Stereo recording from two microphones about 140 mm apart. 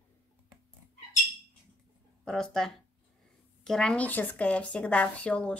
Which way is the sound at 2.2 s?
5° left (ahead or behind).